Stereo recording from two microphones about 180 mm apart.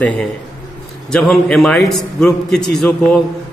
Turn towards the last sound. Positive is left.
turn(degrees=5)  # may be behind; listen again after turning